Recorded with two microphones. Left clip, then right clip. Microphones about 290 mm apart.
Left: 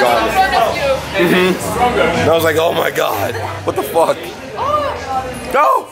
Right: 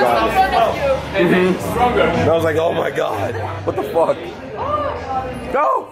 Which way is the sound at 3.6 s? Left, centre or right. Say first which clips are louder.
Left 3 dB; right.